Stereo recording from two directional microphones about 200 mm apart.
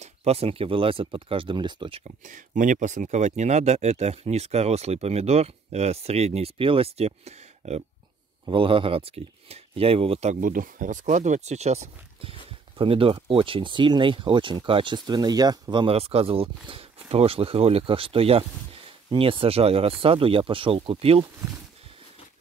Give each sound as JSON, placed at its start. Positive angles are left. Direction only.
{"t": 0.0, "sound": "speech", "side_deg": -30}